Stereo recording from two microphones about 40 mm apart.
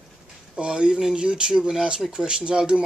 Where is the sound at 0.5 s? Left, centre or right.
Right.